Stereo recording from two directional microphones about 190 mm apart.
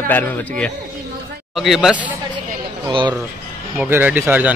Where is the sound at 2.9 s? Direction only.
25° right (ahead or behind).